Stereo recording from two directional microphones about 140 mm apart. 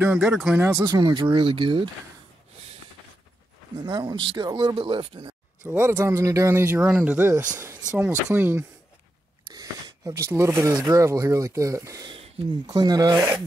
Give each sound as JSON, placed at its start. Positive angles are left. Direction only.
{"t": 0.0, "sound": "a man's voice", "side_deg": -10}
{"t": 0.8, "sound": "speech", "side_deg": -30}
{"t": 3.8, "sound": "speech", "side_deg": -30}
{"t": 5.6, "sound": "a man's voice", "side_deg": -15}
{"t": 9.5, "sound": "speech", "side_deg": -25}